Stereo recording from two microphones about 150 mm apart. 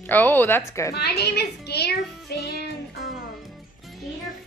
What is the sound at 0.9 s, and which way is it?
A child's voice, 90° left.